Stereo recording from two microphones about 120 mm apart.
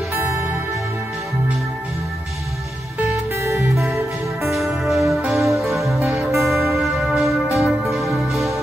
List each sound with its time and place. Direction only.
3.0 s music: 15° right (ahead or behind)
3.4 s music: 25° right (ahead or behind)
4.5 s music: centre (ahead or behind)